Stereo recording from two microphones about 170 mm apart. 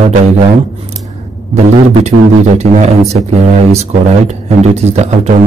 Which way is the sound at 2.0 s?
40° right (ahead or behind).